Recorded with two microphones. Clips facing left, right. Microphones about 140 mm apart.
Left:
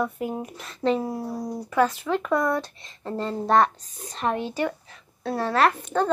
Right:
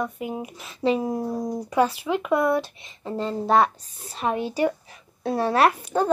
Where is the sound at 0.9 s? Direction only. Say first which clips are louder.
Right 3 dB; 20° right (ahead or behind).